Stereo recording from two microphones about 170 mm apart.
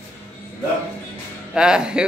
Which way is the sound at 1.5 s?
5° right (ahead or behind).